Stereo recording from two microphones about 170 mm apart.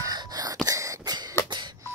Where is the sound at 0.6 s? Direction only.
20° right (ahead or behind).